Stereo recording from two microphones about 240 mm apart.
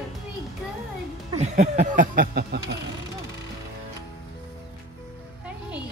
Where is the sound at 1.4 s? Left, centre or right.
Right.